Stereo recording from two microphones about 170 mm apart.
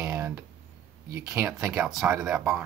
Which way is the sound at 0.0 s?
15° right (ahead or behind).